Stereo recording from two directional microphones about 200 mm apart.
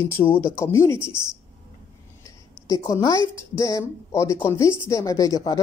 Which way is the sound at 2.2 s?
15° left (ahead or behind).